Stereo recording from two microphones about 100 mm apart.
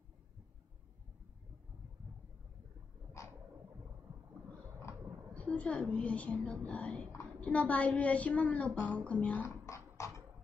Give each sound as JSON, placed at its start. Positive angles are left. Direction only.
{"t": 3.2, "sound": "a sound", "side_deg": 30}
{"t": 5.3, "sound": "a woman's voice", "side_deg": 15}
{"t": 9.7, "sound": "beatboxing", "side_deg": 30}